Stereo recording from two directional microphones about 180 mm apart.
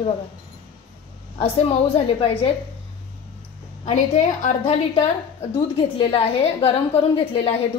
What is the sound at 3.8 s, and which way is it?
A woman's voice, 40° left (ahead or behind).